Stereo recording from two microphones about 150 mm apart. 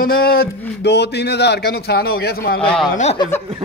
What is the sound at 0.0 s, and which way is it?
Speech, 85° left.